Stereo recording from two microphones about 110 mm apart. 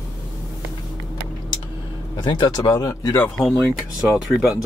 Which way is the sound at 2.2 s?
45° left (ahead or behind).